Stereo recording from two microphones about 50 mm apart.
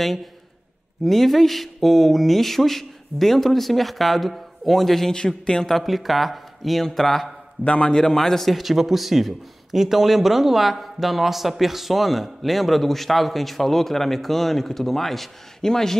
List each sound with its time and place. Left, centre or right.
0.0 s a man's voice: centre
5.1 s a man's voice: centre
7.6 s a man's voice: left
7.9 s a man's voice: centre